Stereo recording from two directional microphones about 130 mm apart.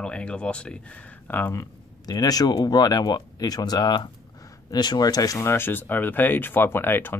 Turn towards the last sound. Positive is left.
turn(degrees=15)  # may be behind; listen again after turning